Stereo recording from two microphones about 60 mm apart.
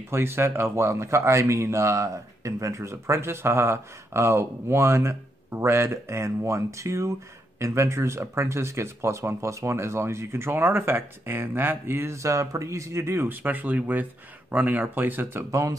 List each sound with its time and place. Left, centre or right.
0.1 s speech: right
13.4 s speech: right